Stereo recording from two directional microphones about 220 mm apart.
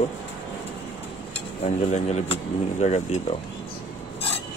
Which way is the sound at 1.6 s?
30° left (ahead or behind).